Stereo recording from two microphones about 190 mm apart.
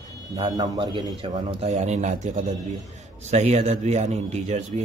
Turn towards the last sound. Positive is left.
turn(degrees=-35)  # may be behind; listen again after turning